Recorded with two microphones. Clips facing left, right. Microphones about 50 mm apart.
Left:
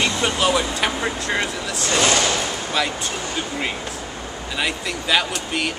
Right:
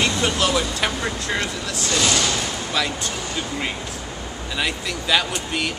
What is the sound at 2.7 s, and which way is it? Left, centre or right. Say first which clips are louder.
Speech: left 1 dB; centre.